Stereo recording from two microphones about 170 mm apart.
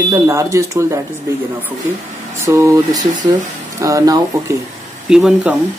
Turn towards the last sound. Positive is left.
turn(degrees=-5)  # may be behind; listen again after turning